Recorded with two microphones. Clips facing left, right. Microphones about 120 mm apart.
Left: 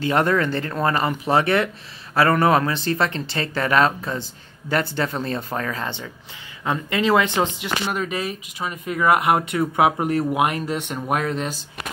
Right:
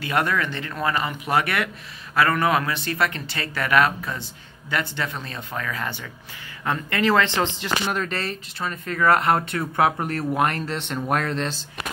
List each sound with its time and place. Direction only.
0.0 s speech: 30° left (ahead or behind); by 11.5 s 5° left (ahead or behind)